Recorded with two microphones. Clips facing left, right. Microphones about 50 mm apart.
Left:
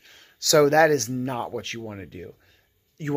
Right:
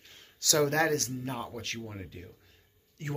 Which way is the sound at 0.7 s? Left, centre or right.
Left.